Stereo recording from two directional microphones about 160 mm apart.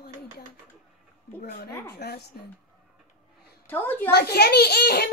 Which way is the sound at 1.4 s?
70° left (ahead or behind).